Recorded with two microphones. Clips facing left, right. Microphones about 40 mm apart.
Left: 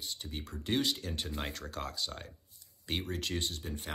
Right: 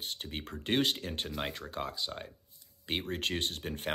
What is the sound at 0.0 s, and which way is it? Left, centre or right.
Speech, right.